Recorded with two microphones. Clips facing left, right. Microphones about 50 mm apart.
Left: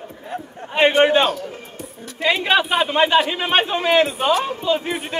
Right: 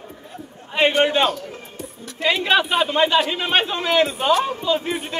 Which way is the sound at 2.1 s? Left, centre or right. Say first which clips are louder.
Left 1 dB; centre.